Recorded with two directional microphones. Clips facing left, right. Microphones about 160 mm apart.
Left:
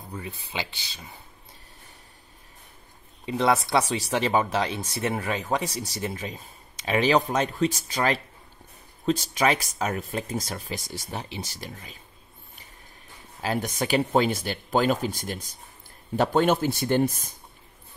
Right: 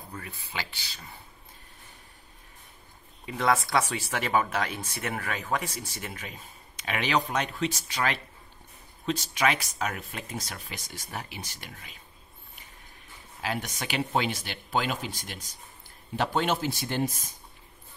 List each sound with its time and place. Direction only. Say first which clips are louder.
0.1 s speech: left 5 dB; 20° left (ahead or behind)
3.3 s speech: left 3 dB; 25° left (ahead or behind)
13.4 s speech: left 6 dB; 40° left (ahead or behind)